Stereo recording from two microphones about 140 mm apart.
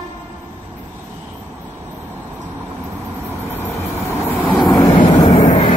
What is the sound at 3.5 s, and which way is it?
Vehicle, 20° left (ahead or behind).